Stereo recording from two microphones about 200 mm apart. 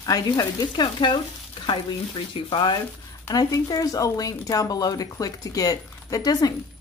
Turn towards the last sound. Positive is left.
turn(degrees=20)  # may be behind; listen again after turning